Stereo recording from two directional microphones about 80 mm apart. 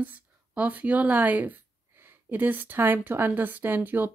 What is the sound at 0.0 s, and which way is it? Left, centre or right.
Speech, right.